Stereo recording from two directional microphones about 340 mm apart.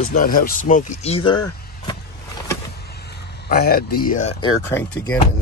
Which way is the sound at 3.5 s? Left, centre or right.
Left.